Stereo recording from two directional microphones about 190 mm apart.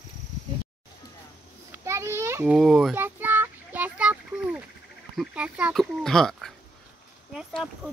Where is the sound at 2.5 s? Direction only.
Centre (ahead or behind).